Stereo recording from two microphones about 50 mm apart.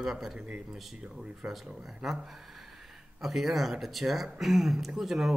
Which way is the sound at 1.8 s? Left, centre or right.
Centre.